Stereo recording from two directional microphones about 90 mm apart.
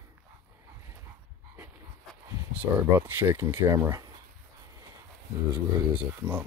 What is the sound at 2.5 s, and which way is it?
Speech, 20° right (ahead or behind).